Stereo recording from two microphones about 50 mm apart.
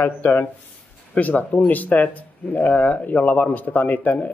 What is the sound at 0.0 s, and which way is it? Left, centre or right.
Speech, left.